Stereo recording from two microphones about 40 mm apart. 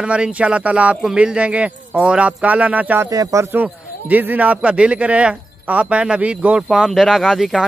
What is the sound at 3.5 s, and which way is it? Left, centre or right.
A man's voice, right.